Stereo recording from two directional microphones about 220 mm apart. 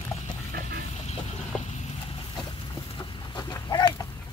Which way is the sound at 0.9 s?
30° left (ahead or behind).